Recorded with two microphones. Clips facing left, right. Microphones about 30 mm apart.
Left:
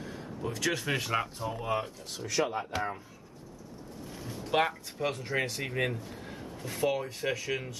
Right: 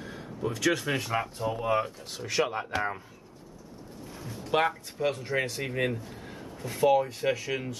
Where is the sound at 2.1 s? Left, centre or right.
Right.